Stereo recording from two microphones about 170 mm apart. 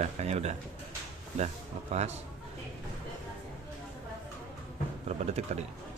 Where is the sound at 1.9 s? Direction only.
40° right (ahead or behind).